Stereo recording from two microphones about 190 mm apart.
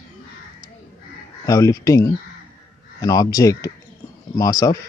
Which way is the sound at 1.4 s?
15° left (ahead or behind).